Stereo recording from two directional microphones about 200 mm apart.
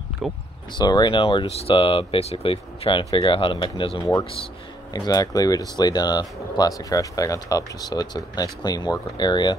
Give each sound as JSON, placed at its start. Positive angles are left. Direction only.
{"t": 0.2, "sound": "speech", "side_deg": 0}
{"t": 0.7, "sound": "speech", "side_deg": 20}